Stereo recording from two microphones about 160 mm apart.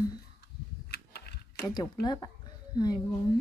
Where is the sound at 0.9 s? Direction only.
90° left.